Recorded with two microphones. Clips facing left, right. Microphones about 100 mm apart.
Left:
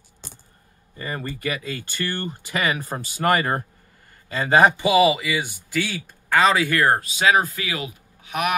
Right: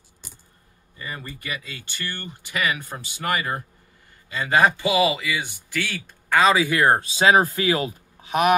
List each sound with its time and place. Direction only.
0.9 s speech: 40° left (ahead or behind)
4.3 s speech: 35° left (ahead or behind)
4.6 s speech: 20° left (ahead or behind); by 6.6 s centre (ahead or behind)
6.6 s speech: 15° right (ahead or behind)
7.0 s speech: 30° right (ahead or behind)